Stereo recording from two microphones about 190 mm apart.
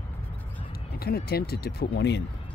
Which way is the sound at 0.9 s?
55° left (ahead or behind).